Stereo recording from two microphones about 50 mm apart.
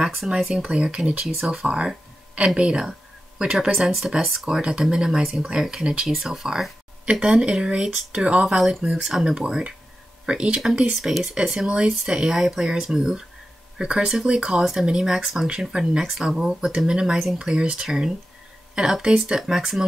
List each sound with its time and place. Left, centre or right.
0.4 s speech: centre
0.7 s speech: centre
1.2 s speech: centre
1.7 s speech: centre
4.6 s speech: centre
6.0 s speech: centre
11.0 s speech: centre